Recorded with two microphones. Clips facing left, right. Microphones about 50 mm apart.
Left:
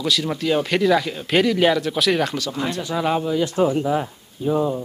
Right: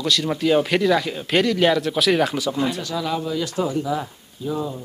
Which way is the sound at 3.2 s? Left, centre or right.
Centre.